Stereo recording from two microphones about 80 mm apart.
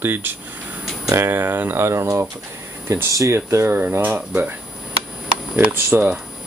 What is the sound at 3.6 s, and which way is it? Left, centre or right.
Speech, right.